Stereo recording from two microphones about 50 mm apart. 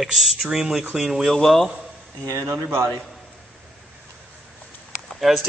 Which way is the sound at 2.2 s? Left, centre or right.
Right.